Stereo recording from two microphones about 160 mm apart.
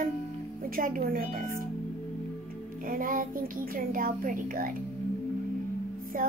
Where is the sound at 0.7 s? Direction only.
60° right (ahead or behind).